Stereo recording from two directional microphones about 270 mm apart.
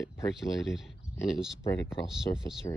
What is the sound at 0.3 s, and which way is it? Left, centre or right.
Speech, centre.